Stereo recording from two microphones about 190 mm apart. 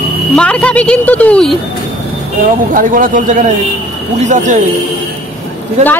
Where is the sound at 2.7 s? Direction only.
45° right (ahead or behind).